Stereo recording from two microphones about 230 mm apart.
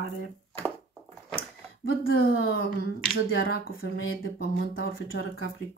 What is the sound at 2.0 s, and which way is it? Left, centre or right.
Speech, left.